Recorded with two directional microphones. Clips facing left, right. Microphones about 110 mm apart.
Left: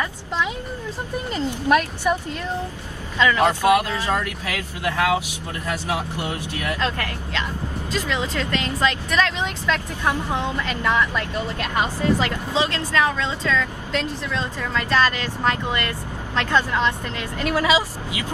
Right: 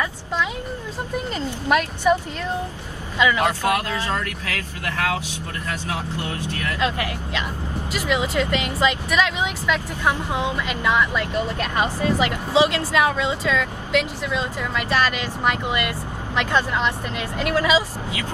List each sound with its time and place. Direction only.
3.2 s speech: 15° right (ahead or behind)
3.6 s speech: 15° left (ahead or behind)
6.8 s speech: 15° right (ahead or behind)
12.2 s speech: 15° right (ahead or behind)
17.6 s speech: 15° left (ahead or behind)